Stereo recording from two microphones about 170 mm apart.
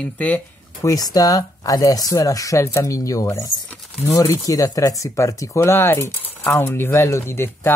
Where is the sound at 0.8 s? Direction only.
20° left (ahead or behind).